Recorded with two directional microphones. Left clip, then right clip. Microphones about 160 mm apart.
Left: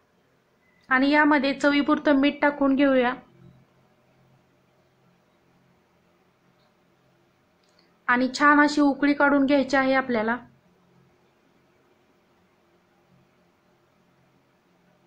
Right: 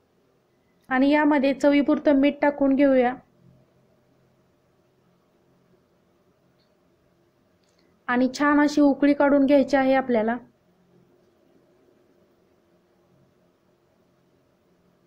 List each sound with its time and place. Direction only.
0.8 s a woman's voice: 20° right (ahead or behind)
8.0 s a sound: 25° right (ahead or behind)
8.4 s a woman's voice: 20° right (ahead or behind)